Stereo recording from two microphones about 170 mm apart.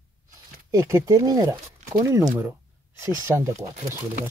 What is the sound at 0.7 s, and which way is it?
Speech, 15° right (ahead or behind).